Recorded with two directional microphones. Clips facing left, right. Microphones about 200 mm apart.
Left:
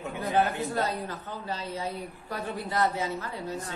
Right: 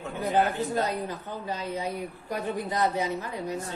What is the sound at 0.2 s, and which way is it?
Speech, 15° right (ahead or behind).